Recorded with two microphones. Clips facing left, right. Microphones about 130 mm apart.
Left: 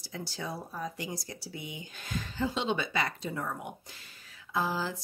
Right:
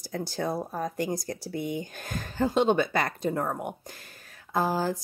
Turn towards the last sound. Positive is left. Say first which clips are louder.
# right 5 dB
turn(degrees=-45)  # may be behind; listen again after turning